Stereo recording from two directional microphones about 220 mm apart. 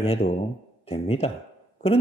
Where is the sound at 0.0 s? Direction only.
25° left (ahead or behind).